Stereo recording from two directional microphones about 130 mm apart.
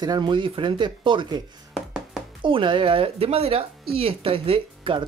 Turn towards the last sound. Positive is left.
turn(degrees=-45)  # may be behind; listen again after turning